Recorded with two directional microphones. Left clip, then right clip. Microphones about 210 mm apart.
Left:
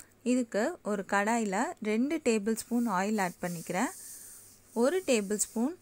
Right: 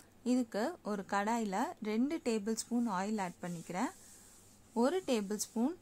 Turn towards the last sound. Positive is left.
turn(degrees=10)  # may be behind; listen again after turning